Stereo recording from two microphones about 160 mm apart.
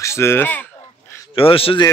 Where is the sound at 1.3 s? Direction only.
35° left (ahead or behind).